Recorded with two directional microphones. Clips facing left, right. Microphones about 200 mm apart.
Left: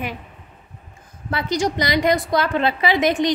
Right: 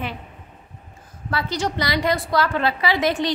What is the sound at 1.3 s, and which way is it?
A woman's voice, 15° left (ahead or behind).